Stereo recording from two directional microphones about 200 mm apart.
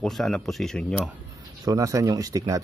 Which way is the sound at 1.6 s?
15° right (ahead or behind).